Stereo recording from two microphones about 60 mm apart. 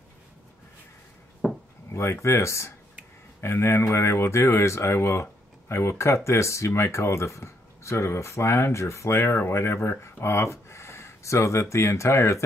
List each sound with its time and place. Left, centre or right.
1.4 s wood: centre
1.9 s speech: left